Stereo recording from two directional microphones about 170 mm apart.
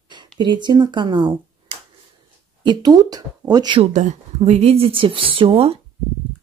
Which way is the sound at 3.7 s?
40° right (ahead or behind).